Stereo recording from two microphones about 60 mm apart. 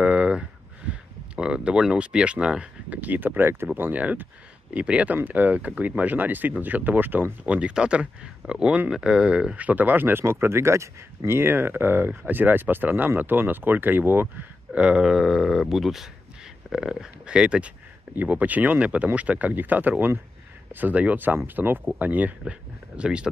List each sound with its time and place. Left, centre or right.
0.0 s a sound: right
3.7 s speech: right
4.0 s speech: right
7.4 s speech: centre; by 14.3 s right
14.7 s speech: centre
18.1 s speech: right
22.5 s speech: centre